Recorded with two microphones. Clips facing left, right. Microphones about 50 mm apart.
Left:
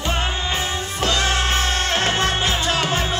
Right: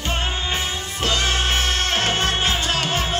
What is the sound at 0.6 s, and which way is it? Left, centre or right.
Music, left.